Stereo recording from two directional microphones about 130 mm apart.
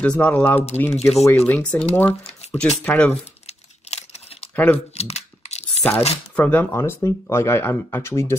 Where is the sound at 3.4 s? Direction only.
55° left (ahead or behind).